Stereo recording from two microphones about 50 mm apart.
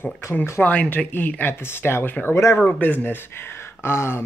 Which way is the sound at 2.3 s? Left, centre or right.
Left.